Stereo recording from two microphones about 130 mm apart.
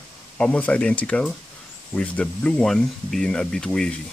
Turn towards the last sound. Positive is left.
turn(degrees=5)  # may be behind; listen again after turning